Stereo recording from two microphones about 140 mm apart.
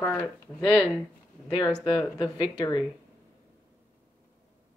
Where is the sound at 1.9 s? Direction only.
35° left (ahead or behind).